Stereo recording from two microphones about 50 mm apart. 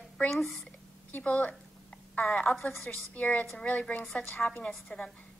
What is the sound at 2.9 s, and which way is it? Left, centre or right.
A woman's voice, left.